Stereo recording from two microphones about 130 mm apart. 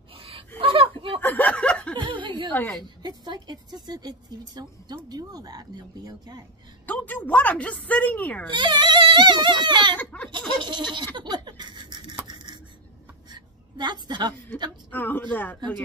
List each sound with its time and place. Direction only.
0.1 s a sound: 45° right (ahead or behind)
1.2 s snicker: 15° left (ahead or behind)
2.0 s chuckle: 40° right (ahead or behind)
2.5 s speech: 15° left (ahead or behind)
3.0 s a woman's voice: 30° right (ahead or behind)
6.9 s speech: 15° left (ahead or behind)
8.5 s a woman's voice: 35° right (ahead or behind)
9.9 s speech: 10° left (ahead or behind)
10.6 s a woman's voice: 35° right (ahead or behind)
11.1 s a sound: 35° right (ahead or behind)
14.9 s speech: 15° left (ahead or behind)